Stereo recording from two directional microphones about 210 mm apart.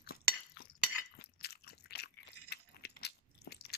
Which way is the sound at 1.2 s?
50° left (ahead or behind).